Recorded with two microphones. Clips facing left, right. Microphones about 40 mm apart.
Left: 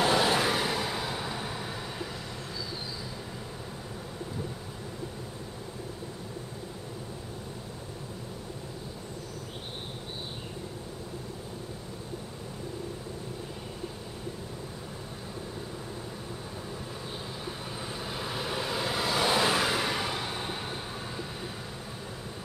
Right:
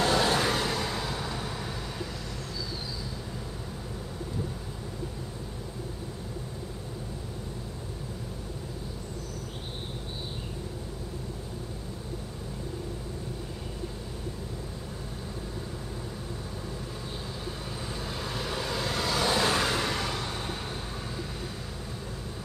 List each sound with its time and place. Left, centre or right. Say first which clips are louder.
0.0 s vehicle: even; centre
17.7 s vehicle: even; centre